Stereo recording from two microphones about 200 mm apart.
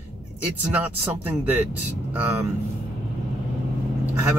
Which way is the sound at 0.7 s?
10° right (ahead or behind).